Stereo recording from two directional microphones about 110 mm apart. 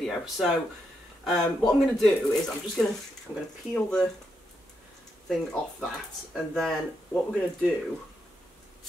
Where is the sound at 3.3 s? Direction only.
35° left (ahead or behind).